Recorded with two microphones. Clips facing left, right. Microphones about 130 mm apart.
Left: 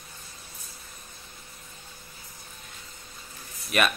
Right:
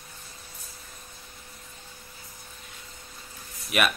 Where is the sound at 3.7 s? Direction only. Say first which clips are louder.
Even; 5° right (ahead or behind).